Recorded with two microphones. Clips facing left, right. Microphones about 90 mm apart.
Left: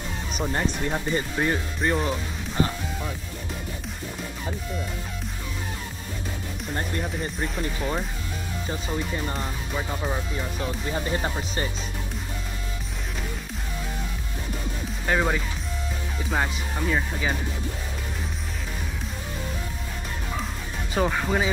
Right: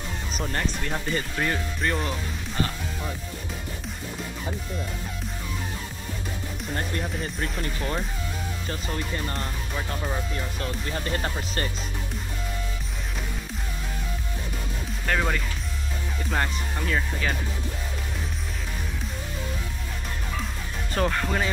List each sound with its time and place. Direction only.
0.4 s speech: 15° left (ahead or behind)
1.8 s speech: 5° left (ahead or behind)
6.7 s speech: 5° left (ahead or behind)
15.0 s speech: 10° left (ahead or behind)
20.9 s speech: 10° left (ahead or behind)